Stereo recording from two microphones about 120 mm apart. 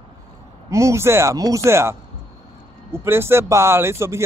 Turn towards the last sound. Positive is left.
turn(degrees=-20)  # may be behind; listen again after turning